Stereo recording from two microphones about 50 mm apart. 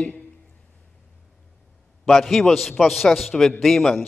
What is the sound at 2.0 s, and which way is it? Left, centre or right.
A man's voice, centre.